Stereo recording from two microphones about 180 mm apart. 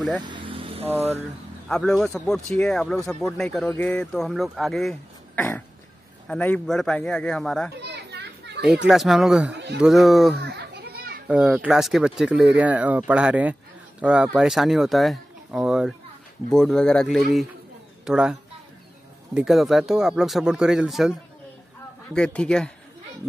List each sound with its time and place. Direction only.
0.2 s vehicle: 25° right (ahead or behind)
1.7 s speech: centre (ahead or behind)
7.8 s children playing: 70° right (ahead or behind)
8.8 s speech: centre (ahead or behind)
10.4 s children playing: 65° right (ahead or behind)
11.2 s speech: 5° right (ahead or behind)
22.1 s speech: 5° left (ahead or behind)